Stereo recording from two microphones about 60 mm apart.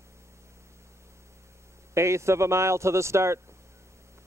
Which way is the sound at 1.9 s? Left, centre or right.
Right.